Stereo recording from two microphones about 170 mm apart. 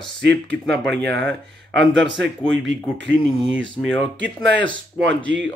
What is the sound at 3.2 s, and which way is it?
Speech, 5° right (ahead or behind).